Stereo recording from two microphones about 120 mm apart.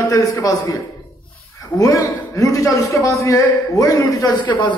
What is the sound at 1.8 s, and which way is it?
A man's voice, 30° left (ahead or behind).